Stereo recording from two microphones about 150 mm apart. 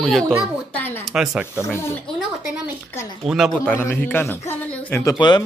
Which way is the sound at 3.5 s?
10° left (ahead or behind).